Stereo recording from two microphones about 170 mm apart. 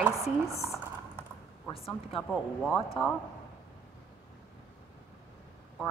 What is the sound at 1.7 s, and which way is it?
Speech, 35° left (ahead or behind).